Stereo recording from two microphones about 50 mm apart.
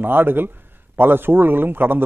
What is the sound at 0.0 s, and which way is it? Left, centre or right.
A man's voice, right.